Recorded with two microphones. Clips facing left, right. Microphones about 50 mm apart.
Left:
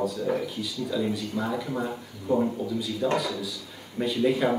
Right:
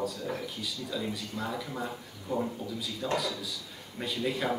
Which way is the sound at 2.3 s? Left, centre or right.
Left.